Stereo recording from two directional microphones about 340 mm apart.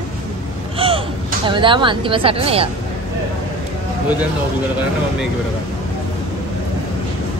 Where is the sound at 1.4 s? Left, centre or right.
Centre.